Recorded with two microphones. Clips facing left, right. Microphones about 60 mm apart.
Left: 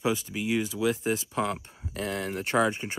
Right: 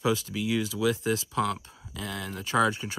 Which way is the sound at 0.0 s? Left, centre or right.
Left.